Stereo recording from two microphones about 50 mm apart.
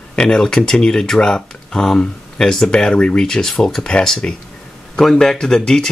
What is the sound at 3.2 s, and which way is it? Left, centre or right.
A man's voice, centre.